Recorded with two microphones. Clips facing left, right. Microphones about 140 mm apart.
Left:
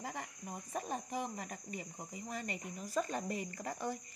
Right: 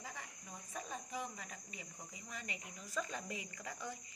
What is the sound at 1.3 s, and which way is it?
Speech, 50° left (ahead or behind).